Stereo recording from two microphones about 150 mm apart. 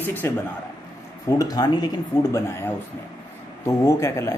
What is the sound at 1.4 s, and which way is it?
Speech, 25° left (ahead or behind).